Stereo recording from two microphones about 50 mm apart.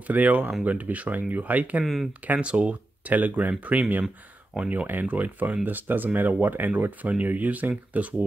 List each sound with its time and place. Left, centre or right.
0.0 s speech: right
4.8 s speech: right